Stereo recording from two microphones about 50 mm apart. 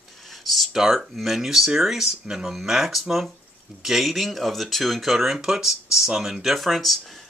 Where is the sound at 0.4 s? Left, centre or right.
Centre.